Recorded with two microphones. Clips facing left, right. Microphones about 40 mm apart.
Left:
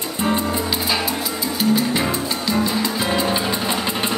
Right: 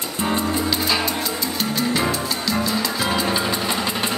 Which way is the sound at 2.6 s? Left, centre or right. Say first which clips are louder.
Left 1 dB; left.